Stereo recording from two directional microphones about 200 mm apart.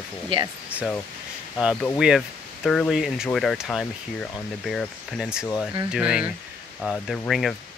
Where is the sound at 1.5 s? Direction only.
Centre (ahead or behind).